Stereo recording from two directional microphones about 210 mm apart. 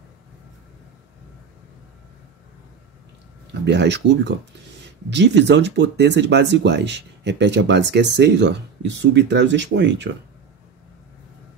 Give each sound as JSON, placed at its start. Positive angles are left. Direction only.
{"t": 3.6, "sound": "speech", "side_deg": -55}